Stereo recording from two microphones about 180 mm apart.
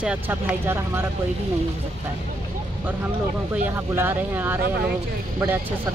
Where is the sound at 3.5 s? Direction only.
10° right (ahead or behind).